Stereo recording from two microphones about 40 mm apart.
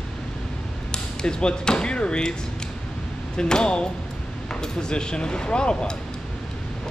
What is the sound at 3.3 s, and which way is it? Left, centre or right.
Speech, left.